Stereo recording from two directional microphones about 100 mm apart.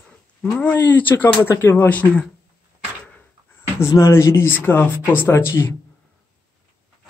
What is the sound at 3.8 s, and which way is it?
Speech, 30° left (ahead or behind).